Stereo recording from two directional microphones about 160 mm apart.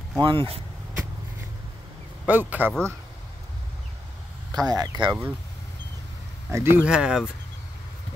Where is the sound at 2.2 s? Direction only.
10° right (ahead or behind).